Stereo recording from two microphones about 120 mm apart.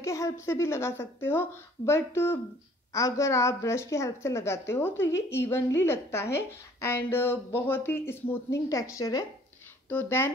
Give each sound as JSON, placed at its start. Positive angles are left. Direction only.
{"t": 0.0, "sound": "a woman's voice", "side_deg": 25}